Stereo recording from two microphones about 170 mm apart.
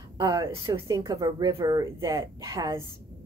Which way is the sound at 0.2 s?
20° right (ahead or behind).